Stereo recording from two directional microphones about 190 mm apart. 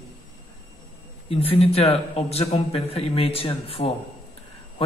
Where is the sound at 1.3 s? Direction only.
30° left (ahead or behind).